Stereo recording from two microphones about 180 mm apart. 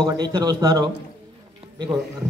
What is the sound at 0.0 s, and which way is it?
Speech, 25° right (ahead or behind).